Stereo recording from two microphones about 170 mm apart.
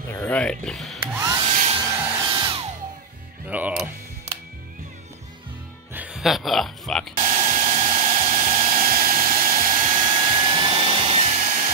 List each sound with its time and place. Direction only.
0.1 s speech: 10° left (ahead or behind)
1.0 s hair dryer: 15° right (ahead or behind)
1.4 s hair dryer: 40° right (ahead or behind)
1.8 s vacuum cleaner: 15° right (ahead or behind)
2.2 s music: 25° right (ahead or behind)
3.4 s speech: 10° right (ahead or behind)
5.9 s speech: 5° right (ahead or behind)
7.2 s hair dryer: 45° right (ahead or behind)
10.4 s a sound: 30° right (ahead or behind)